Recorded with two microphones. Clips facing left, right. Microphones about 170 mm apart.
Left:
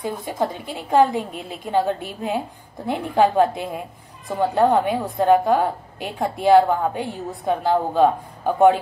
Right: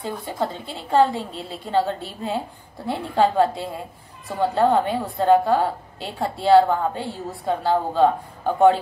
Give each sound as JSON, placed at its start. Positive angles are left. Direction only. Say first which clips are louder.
{"t": 0.0, "sound": "a woman's voice", "louder": "left 2 dB", "side_deg": 20}